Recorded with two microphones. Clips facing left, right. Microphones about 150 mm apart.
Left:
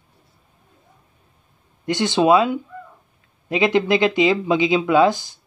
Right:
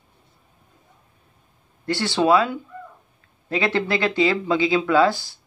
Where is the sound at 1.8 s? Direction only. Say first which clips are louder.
Left 3 dB; 20° left (ahead or behind).